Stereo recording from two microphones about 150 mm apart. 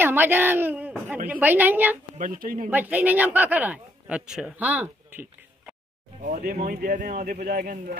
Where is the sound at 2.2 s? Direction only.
70° right (ahead or behind).